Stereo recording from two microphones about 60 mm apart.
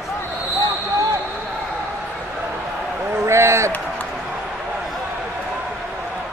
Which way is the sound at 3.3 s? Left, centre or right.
Right.